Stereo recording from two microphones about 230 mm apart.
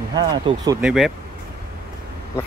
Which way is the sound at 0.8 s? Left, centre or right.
Centre.